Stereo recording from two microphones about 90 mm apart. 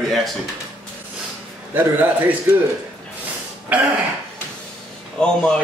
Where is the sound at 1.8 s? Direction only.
20° right (ahead or behind).